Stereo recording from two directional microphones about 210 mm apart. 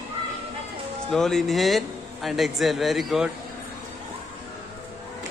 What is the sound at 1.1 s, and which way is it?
A man's voice, centre (ahead or behind).